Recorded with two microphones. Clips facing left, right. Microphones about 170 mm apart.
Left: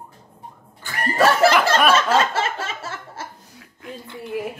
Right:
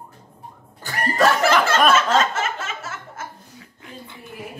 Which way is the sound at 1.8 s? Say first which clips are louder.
Even; 10° left (ahead or behind).